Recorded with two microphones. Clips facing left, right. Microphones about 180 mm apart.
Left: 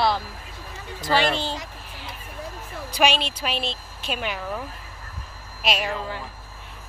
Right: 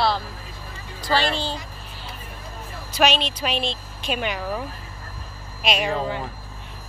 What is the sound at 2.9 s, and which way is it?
A woman's voice, 10° left (ahead or behind).